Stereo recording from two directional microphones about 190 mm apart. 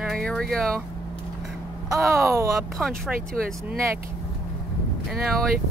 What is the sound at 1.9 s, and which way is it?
Speech, 15° right (ahead or behind).